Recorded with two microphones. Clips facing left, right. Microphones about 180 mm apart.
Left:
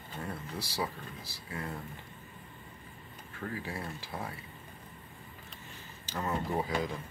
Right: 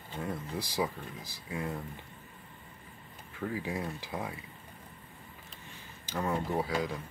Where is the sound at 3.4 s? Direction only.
15° right (ahead or behind).